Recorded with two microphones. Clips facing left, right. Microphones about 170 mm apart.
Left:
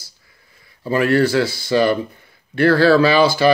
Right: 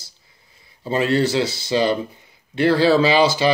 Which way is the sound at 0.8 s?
25° right (ahead or behind).